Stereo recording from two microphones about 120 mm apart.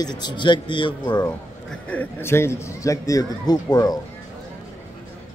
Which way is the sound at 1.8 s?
15° left (ahead or behind).